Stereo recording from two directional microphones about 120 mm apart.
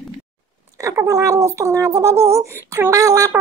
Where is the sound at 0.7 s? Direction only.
25° right (ahead or behind).